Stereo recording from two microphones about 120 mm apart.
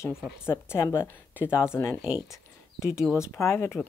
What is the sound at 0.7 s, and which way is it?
Speech, 25° left (ahead or behind).